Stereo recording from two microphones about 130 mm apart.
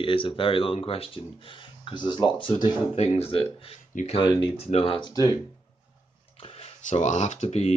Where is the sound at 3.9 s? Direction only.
75° left (ahead or behind).